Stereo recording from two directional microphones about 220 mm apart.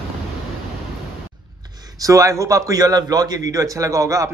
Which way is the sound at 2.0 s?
15° right (ahead or behind).